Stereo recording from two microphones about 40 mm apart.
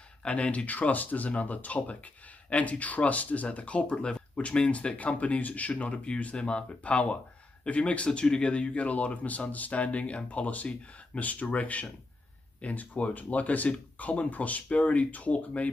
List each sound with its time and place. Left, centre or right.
0.2 s speech: left
3.9 s speech: left